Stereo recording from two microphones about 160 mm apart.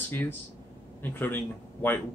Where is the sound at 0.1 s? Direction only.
10° left (ahead or behind).